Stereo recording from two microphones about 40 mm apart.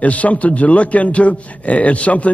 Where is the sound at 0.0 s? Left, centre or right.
Left.